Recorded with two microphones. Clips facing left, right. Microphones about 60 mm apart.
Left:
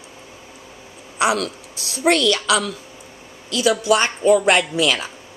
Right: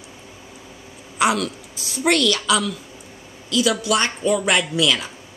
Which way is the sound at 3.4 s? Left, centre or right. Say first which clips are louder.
Left 2 dB; left.